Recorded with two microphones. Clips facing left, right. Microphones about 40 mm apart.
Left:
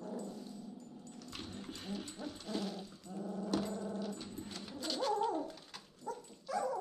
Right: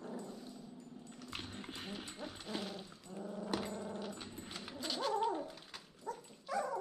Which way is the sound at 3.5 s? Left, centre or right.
Right.